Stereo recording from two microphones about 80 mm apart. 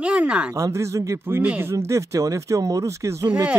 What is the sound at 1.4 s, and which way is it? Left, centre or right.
Speech, centre.